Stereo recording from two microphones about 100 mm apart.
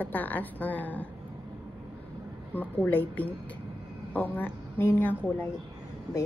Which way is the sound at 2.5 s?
15° left (ahead or behind).